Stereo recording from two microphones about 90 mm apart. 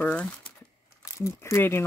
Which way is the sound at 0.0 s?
15° left (ahead or behind).